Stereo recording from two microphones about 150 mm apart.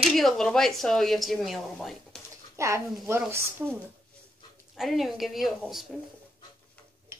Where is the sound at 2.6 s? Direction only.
20° right (ahead or behind).